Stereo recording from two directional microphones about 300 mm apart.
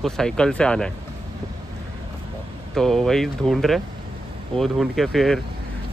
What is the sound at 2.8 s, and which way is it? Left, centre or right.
Speech, centre.